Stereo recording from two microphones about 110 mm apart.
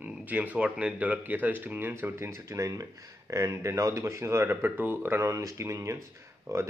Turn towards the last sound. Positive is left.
turn(degrees=-25)  # may be behind; listen again after turning